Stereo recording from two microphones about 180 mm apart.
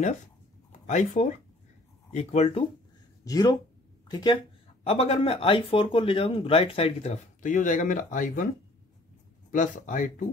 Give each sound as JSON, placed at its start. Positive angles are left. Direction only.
{"t": 0.7, "sound": "speech", "side_deg": 40}
{"t": 3.3, "sound": "speech", "side_deg": 20}
{"t": 9.5, "sound": "speech", "side_deg": 45}